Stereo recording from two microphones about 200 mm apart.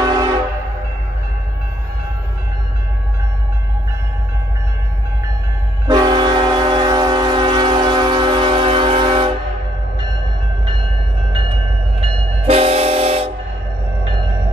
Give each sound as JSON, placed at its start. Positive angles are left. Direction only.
{"t": 0.0, "sound": "train", "side_deg": -20}
{"t": 5.9, "sound": "train", "side_deg": -20}
{"t": 12.0, "sound": "train", "side_deg": -25}